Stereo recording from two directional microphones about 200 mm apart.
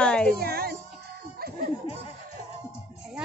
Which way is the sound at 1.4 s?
50° right (ahead or behind).